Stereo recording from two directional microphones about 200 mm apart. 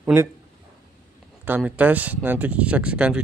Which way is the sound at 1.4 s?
10° right (ahead or behind).